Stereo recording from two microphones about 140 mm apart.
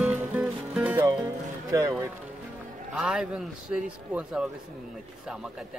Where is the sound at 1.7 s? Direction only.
20° right (ahead or behind).